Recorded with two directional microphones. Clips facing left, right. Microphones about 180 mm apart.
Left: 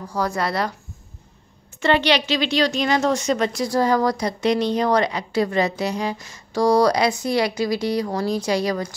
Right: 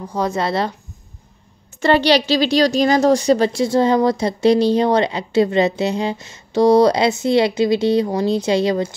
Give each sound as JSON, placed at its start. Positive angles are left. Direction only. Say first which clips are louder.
{"t": 0.1, "sound": "a woman's voice", "louder": "right 3 dB", "side_deg": -20}
{"t": 1.8, "sound": "a woman's voice", "louder": "right 4 dB", "side_deg": -35}